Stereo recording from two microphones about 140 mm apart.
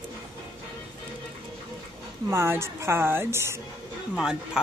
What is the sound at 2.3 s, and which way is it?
A woman's voice, 20° right (ahead or behind).